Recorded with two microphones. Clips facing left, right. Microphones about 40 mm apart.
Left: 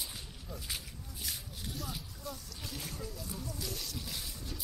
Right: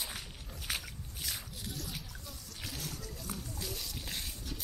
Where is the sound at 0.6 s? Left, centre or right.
Right.